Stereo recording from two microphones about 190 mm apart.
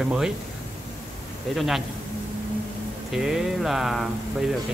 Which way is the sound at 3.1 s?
Centre (ahead or behind).